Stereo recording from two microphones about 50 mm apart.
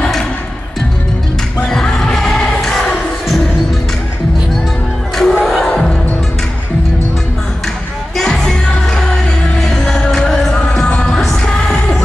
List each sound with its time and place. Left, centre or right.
1.7 s music: centre
5.1 s music: centre
8.2 s music: centre